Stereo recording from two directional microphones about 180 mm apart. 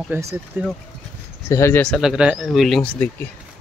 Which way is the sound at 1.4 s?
15° left (ahead or behind).